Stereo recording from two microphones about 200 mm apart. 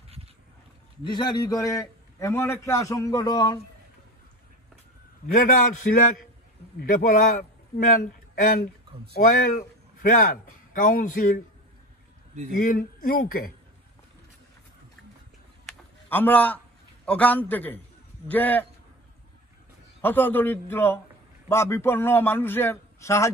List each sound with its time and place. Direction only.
1.1 s a man's voice: 20° left (ahead or behind)
5.2 s a man's voice: 40° left (ahead or behind)
12.5 s speech: 45° left (ahead or behind)
16.1 s a man's voice: 10° left (ahead or behind)
20.0 s a man's voice: 10° left (ahead or behind)